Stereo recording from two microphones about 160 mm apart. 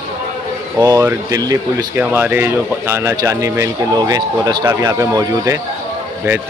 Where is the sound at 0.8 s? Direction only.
20° right (ahead or behind).